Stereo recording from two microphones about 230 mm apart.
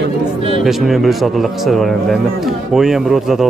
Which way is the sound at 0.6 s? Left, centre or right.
Centre.